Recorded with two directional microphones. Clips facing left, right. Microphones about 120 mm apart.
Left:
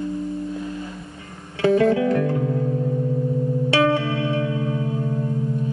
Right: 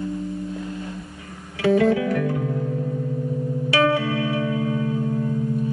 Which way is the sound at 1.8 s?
30° left (ahead or behind).